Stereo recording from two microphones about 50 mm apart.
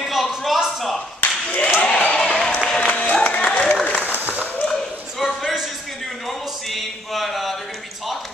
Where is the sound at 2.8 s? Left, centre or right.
Left.